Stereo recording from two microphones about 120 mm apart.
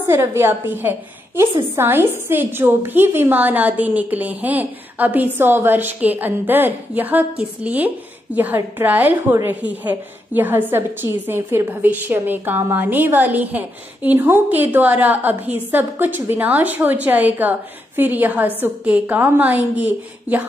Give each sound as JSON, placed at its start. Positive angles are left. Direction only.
{"t": 0.0, "sound": "a woman's voice", "side_deg": -20}